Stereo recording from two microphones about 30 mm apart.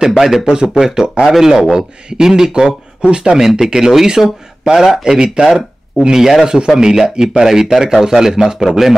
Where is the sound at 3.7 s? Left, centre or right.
Centre.